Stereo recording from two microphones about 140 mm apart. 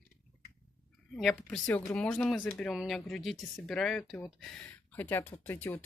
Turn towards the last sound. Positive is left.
turn(degrees=15)  # may be behind; listen again after turning